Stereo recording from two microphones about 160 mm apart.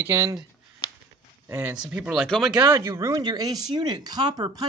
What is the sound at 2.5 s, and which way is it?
Speech, 20° right (ahead or behind).